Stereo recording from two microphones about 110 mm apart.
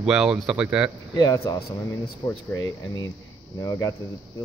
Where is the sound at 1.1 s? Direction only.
35° left (ahead or behind).